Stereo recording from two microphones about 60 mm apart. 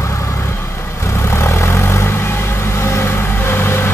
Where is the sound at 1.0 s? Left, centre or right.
Left.